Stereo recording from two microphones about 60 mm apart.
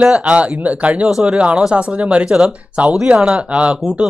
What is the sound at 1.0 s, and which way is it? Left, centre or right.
A man's voice, centre.